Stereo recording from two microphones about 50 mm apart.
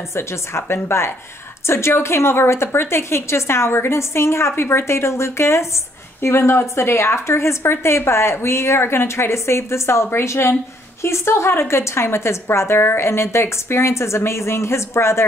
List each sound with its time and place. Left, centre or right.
0.1 s a woman's voice: left
6.2 s a woman's voice: left